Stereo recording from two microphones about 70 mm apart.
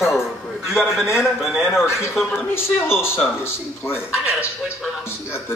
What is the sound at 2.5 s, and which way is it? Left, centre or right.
Speech, left.